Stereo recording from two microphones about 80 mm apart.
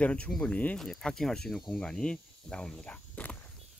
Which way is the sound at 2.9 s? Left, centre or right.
Centre.